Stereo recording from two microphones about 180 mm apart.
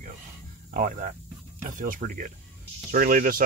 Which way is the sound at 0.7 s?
50° right (ahead or behind).